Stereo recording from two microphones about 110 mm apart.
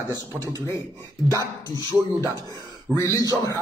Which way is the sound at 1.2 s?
30° right (ahead or behind).